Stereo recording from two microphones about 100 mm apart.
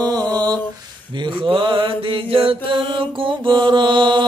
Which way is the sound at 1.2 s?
55° right (ahead or behind).